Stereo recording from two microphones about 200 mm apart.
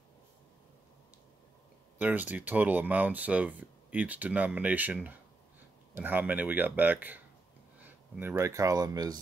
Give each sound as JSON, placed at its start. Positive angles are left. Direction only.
{"t": 2.0, "sound": "speech", "side_deg": -10}